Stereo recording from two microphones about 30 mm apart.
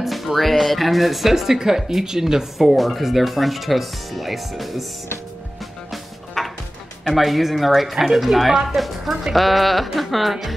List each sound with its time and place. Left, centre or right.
0.0 s music: centre
0.4 s speech: centre
2.6 s speech: centre
6.4 s music: centre
7.2 s speech: centre